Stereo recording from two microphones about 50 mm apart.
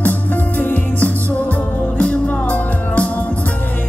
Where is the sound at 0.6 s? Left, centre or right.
Left.